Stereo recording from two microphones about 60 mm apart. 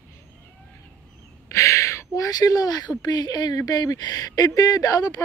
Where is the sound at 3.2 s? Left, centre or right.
Left.